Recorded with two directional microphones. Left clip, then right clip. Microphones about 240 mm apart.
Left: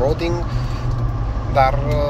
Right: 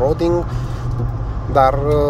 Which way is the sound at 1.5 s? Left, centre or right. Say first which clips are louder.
Right 3 dB; right.